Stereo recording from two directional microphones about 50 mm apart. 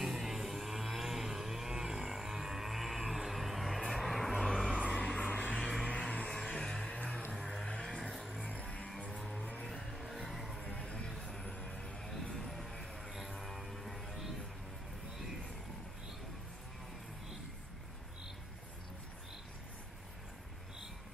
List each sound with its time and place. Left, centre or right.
0.0 s vehicle: centre
4.5 s vehicle: centre
4.9 s a sound: centre
5.3 s music: left
5.6 s vehicle: centre
5.9 s a sound: left
7.0 s music: left
7.6 s vehicle: centre
8.4 s music: left
9.7 s vehicle: centre
10.6 s a sound: centre
11.4 s music: centre